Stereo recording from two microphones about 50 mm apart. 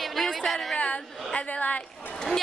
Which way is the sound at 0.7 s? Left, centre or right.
Left.